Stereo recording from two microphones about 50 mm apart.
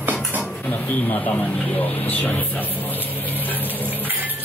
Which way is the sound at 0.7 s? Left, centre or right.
Left.